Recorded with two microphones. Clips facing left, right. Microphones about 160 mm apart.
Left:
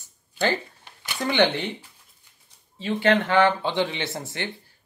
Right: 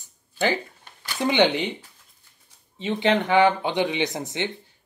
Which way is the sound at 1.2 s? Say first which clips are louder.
Right 2 dB; 15° right (ahead or behind).